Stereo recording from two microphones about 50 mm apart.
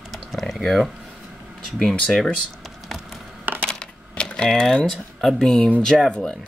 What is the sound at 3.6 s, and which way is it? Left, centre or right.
Coin, centre.